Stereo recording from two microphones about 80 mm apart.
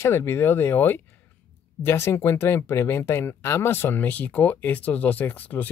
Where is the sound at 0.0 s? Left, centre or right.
Left.